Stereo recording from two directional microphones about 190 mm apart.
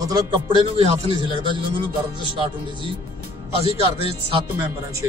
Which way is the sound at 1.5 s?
25° right (ahead or behind).